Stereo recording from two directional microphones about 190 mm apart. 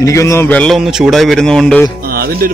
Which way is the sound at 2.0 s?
50° right (ahead or behind).